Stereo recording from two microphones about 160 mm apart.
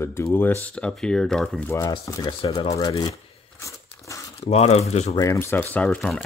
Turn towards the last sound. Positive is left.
turn(degrees=5)  # may be behind; listen again after turning